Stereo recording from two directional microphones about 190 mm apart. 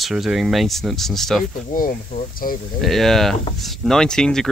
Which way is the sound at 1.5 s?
45° left (ahead or behind).